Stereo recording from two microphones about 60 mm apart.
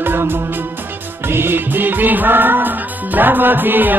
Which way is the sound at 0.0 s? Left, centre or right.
Right.